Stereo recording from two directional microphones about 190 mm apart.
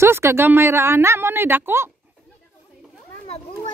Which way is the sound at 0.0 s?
15° right (ahead or behind).